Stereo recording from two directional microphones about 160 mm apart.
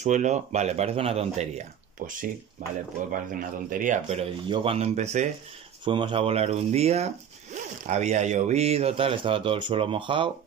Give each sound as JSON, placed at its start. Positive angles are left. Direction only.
{"t": 0.0, "sound": "speech", "side_deg": -50}
{"t": 2.6, "sound": "speech", "side_deg": -50}
{"t": 5.9, "sound": "speech", "side_deg": -30}